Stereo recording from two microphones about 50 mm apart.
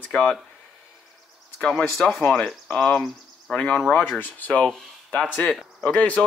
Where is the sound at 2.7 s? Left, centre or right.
Left.